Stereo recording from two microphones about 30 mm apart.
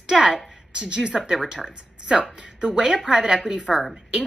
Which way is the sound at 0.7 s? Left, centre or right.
Right.